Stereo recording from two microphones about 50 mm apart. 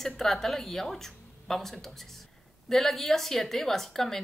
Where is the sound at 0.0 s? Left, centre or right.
Centre.